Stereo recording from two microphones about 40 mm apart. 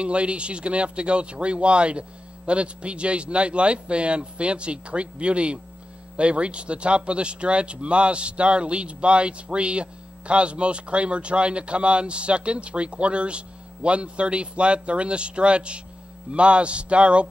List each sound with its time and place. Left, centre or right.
0.0 s speech: right